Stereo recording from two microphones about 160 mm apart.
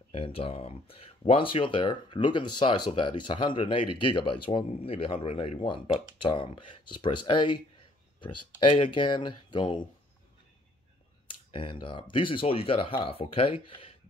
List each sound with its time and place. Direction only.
0.1 s speech: 35° left (ahead or behind)
11.5 s speech: 30° left (ahead or behind)